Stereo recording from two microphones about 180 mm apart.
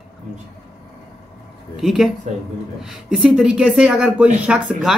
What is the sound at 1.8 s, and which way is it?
Speech, centre (ahead or behind).